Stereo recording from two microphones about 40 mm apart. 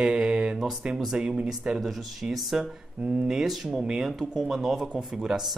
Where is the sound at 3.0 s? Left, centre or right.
Right.